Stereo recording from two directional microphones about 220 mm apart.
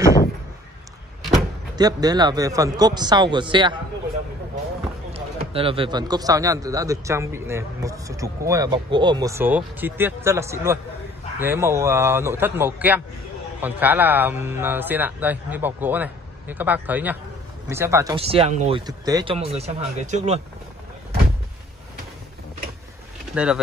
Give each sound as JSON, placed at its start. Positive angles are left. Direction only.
{"t": 1.8, "sound": "a man's voice", "side_deg": -15}
{"t": 5.5, "sound": "speech", "side_deg": -25}
{"t": 18.1, "sound": "a man's voice", "side_deg": -25}
{"t": 18.9, "sound": "a man's voice", "side_deg": -15}
{"t": 23.3, "sound": "speech", "side_deg": -5}